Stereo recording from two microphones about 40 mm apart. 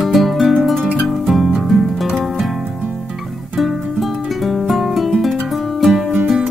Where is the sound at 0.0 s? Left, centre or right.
Centre.